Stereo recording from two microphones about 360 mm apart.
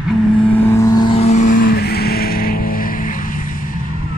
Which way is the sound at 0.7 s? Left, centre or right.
Centre.